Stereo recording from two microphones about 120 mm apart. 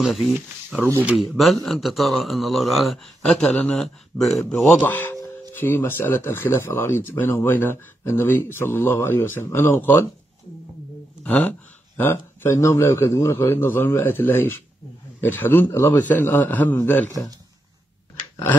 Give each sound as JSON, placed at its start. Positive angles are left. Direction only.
{"t": 0.0, "sound": "speech", "side_deg": 0}
{"t": 4.8, "sound": "a man's voice", "side_deg": 15}
{"t": 11.2, "sound": "a man's voice", "side_deg": 10}
{"t": 18.3, "sound": "a sound", "side_deg": 20}